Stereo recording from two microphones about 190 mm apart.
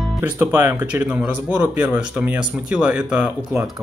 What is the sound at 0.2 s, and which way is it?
Speech, 10° right (ahead or behind).